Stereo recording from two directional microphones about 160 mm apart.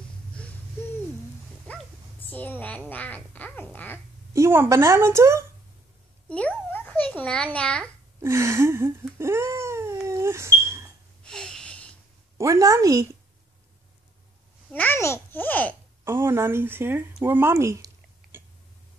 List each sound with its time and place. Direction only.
0.3 s a sound: 5° left (ahead or behind)
1.7 s dog: 10° left (ahead or behind)
2.2 s duck: 10° left (ahead or behind)
4.3 s a woman's voice: 15° right (ahead or behind)
6.2 s a child's voice: 10° left (ahead or behind)
8.2 s cat: 20° right (ahead or behind)
10.0 s a sound: 20° right (ahead or behind)
11.2 s a sound: 5° left (ahead or behind)
12.4 s a woman's voice: 20° right (ahead or behind)
14.7 s duck: 10° left (ahead or behind)
16.0 s speech: 15° right (ahead or behind)